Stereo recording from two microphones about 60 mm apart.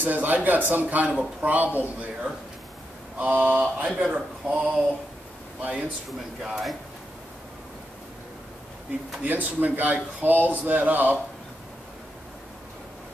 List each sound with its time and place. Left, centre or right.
0.0 s speech: right
3.2 s speech: right
6.4 s speech: centre
9.2 s speech: right